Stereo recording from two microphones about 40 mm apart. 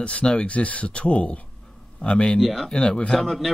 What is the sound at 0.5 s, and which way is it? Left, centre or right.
Speech, left.